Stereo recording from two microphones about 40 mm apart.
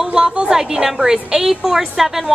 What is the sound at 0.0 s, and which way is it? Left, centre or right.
A woman's voice, centre.